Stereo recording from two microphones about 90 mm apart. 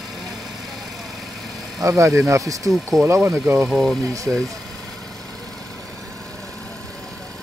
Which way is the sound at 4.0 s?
40° right (ahead or behind).